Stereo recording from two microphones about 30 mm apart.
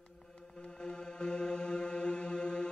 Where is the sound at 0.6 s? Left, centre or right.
Left.